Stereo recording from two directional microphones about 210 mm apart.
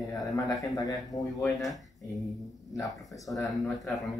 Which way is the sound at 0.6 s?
15° left (ahead or behind).